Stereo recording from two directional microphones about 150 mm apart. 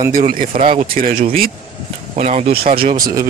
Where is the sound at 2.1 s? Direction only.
45° right (ahead or behind).